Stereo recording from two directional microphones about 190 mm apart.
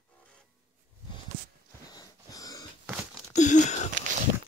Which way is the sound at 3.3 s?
40° left (ahead or behind).